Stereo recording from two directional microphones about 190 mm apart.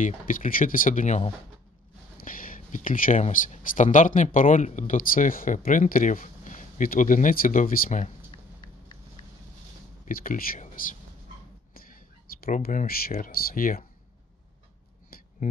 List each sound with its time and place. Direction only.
0.0 s speech: 45° left (ahead or behind)
8.3 s a sound: 25° left (ahead or behind)
10.0 s speech: 45° left (ahead or behind)
12.4 s speech: 50° left (ahead or behind)